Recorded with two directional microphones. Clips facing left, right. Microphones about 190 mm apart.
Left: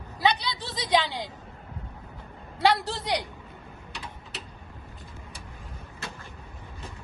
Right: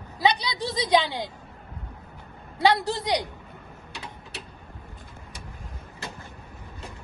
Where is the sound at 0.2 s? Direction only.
15° right (ahead or behind).